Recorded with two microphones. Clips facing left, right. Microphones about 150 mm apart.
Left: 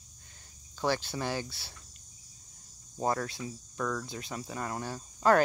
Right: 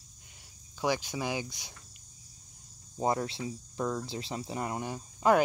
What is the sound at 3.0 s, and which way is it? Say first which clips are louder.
Speech: right 1 dB; 20° right (ahead or behind).